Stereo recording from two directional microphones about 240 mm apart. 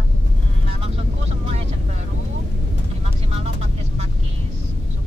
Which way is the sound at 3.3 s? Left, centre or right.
Right.